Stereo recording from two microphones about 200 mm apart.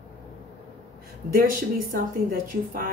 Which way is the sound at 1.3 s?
45° right (ahead or behind).